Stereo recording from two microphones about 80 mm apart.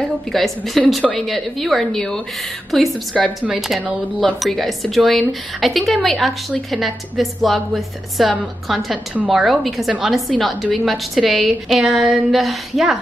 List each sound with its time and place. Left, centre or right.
0.3 s a woman's voice: centre
8.9 s a woman's voice: centre
9.4 s a woman's voice: centre